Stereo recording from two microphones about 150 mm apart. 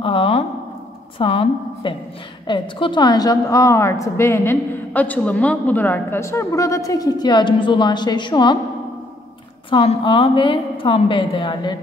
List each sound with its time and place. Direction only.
0.0 s a sound: 35° left (ahead or behind)
1.1 s a woman's voice: 40° left (ahead or behind)
9.7 s a woman's voice: 35° left (ahead or behind)